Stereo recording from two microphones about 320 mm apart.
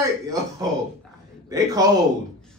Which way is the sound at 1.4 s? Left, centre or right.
Centre.